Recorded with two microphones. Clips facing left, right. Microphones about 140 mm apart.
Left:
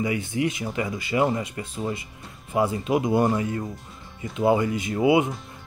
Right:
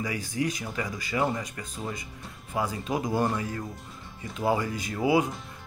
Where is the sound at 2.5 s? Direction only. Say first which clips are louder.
Left 7 dB; 25° left (ahead or behind).